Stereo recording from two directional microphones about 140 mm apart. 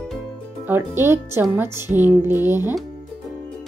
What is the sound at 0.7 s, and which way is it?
Speech, 15° right (ahead or behind).